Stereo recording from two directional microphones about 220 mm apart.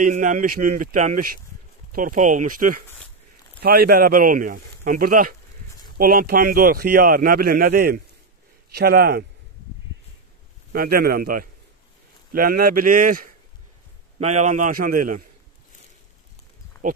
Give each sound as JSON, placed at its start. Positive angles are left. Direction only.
{"t": 0.0, "sound": "a man's voice", "side_deg": -35}
{"t": 10.7, "sound": "a man's voice", "side_deg": -45}
{"t": 16.8, "sound": "speech", "side_deg": -35}